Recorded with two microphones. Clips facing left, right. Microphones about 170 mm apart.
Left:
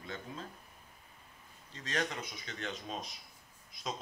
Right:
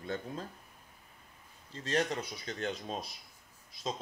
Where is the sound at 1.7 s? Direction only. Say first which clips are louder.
Right 5 dB; 30° right (ahead or behind).